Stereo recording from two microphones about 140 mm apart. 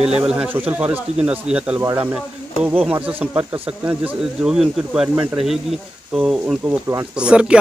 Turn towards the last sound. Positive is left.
turn(degrees=-5)  # may be behind; listen again after turning